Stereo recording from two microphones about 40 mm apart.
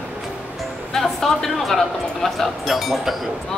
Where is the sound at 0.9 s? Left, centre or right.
Centre.